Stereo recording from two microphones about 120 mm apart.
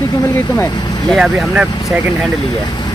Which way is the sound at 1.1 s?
5° right (ahead or behind).